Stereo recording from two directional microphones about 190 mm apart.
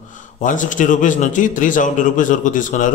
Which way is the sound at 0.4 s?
40° left (ahead or behind).